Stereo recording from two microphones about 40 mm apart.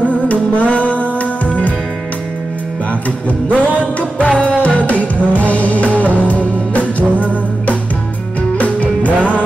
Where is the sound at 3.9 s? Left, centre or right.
Left.